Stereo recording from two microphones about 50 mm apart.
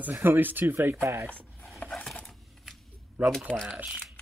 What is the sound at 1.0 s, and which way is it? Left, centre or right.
Speech, right.